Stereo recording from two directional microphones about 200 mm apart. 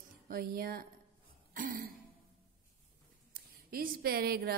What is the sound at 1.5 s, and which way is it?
Throat clearing, 45° right (ahead or behind).